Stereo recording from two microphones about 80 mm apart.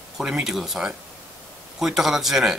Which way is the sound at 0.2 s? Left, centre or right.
Centre.